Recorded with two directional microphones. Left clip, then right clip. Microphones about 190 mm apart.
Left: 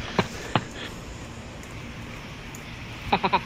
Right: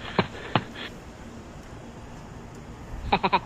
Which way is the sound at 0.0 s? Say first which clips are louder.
Even; centre (ahead or behind).